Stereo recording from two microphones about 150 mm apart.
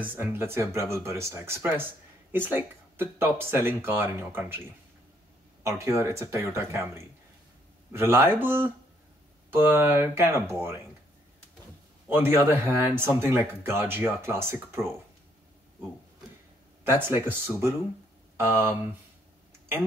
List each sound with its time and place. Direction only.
0.1 s speech: 15° right (ahead or behind)
5.6 s speech: 20° right (ahead or behind)
12.1 s speech: 15° right (ahead or behind)
16.8 s speech: 15° right (ahead or behind)